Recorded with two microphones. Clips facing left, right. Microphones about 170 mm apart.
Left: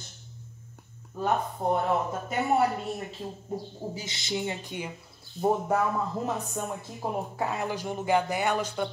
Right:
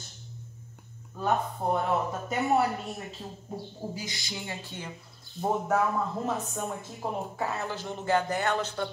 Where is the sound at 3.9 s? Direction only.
25° left (ahead or behind).